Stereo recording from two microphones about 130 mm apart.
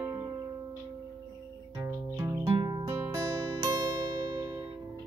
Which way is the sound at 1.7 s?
20° right (ahead or behind).